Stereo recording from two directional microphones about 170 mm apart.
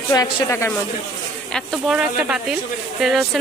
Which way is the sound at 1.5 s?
5° right (ahead or behind).